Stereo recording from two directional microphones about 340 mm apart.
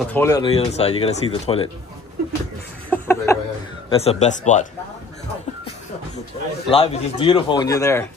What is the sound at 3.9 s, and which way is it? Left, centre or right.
Speech, centre.